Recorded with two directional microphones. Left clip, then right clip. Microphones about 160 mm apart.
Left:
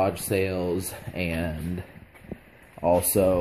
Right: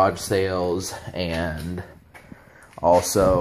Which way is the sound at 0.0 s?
20° left (ahead or behind).